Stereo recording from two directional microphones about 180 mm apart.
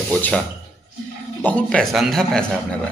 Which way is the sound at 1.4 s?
5° left (ahead or behind).